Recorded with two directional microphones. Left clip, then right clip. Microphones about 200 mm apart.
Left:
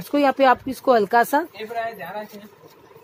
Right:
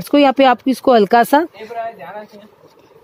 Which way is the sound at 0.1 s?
40° right (ahead or behind).